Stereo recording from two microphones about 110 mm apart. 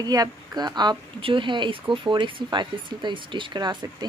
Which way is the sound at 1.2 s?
55° right (ahead or behind).